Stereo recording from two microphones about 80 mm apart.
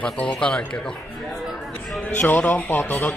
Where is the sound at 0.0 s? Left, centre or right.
Centre.